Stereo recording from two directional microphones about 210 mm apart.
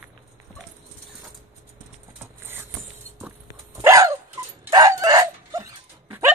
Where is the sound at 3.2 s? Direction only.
10° right (ahead or behind).